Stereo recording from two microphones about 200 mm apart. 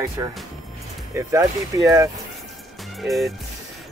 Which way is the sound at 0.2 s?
15° right (ahead or behind).